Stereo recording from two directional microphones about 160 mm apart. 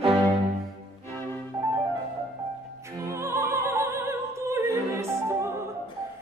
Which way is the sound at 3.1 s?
15° right (ahead or behind).